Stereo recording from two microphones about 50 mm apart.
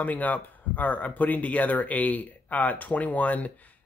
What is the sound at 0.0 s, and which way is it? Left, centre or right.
Speech, left.